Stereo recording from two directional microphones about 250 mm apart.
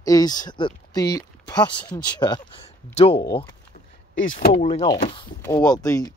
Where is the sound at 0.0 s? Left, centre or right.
Centre.